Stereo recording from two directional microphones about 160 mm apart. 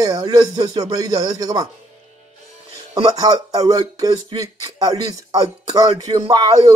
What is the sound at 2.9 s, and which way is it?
Speech, 25° right (ahead or behind).